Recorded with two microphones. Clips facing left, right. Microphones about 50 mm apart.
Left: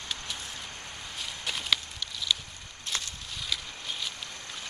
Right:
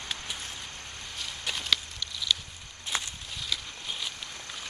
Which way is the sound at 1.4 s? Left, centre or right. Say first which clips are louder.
Even; centre.